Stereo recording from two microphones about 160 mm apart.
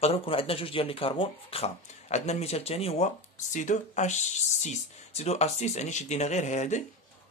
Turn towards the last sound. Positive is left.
turn(degrees=50)  # may be behind; listen again after turning